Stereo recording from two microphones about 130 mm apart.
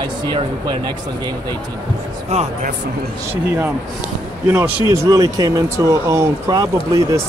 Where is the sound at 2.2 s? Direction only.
55° right (ahead or behind).